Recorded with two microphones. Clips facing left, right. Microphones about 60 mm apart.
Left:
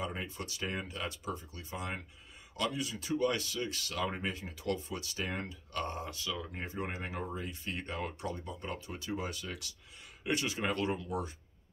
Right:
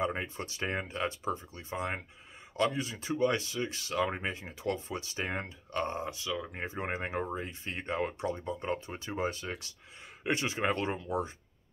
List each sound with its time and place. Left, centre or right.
0.0 s speech: right